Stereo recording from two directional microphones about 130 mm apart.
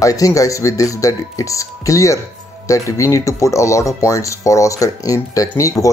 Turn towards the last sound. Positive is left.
turn(degrees=25)  # may be behind; listen again after turning